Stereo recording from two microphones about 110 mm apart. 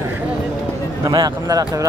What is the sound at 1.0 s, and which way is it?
Speech, 35° right (ahead or behind).